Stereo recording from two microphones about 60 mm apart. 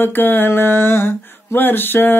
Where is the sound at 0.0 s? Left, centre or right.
Left.